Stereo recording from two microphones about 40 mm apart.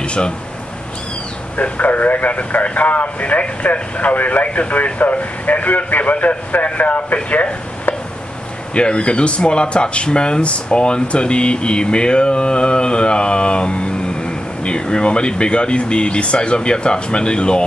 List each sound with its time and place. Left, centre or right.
0.0 s speech: left
1.6 s speech: left
8.7 s speech: left